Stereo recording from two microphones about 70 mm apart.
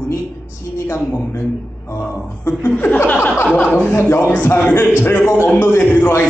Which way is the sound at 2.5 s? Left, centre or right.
Left.